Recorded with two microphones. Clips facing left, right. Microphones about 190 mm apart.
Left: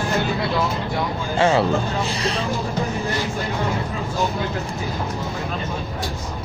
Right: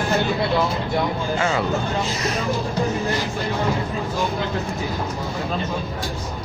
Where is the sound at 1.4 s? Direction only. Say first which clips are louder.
Left 7 dB; 30° left (ahead or behind).